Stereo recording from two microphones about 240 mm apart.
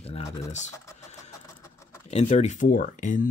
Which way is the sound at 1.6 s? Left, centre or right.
Centre.